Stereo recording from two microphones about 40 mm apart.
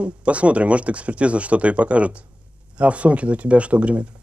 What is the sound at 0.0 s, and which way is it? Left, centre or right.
Speech, right.